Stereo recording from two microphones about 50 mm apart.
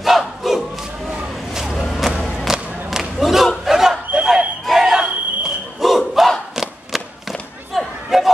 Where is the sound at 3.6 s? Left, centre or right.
Centre.